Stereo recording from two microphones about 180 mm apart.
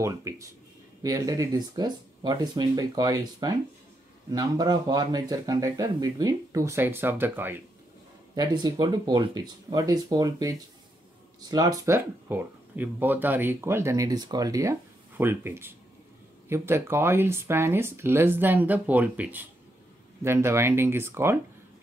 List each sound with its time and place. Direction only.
0.0 s speech: 15° right (ahead or behind)
8.4 s speech: 20° right (ahead or behind)
11.5 s speech: 20° right (ahead or behind)